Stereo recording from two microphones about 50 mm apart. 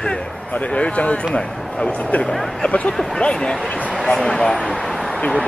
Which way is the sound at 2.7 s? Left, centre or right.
Left.